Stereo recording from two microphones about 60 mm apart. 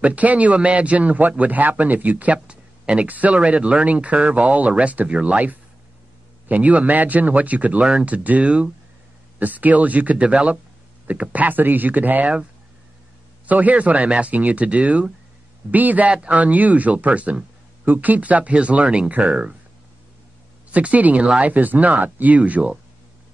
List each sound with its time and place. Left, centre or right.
0.0 s a man's voice: right
13.5 s a man's voice: right
20.7 s a man's voice: right